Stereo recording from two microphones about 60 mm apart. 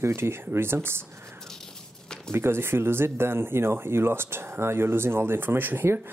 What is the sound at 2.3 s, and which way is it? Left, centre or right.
Speech, right.